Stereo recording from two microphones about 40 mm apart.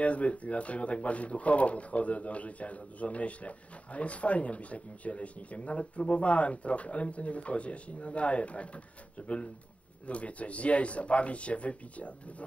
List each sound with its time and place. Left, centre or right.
0.0 s speech: left
10.0 s speech: left